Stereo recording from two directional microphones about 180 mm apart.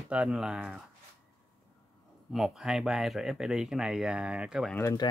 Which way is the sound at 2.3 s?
Centre (ahead or behind).